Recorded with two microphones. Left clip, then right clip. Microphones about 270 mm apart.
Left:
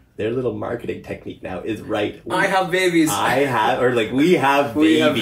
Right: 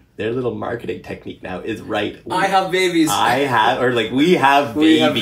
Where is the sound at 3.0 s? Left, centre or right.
Centre.